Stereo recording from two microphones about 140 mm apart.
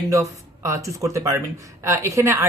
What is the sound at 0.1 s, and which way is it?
Speech, 25° right (ahead or behind).